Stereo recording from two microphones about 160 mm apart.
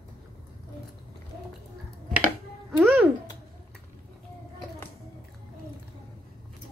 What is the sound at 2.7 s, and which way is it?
Music, 10° right (ahead or behind).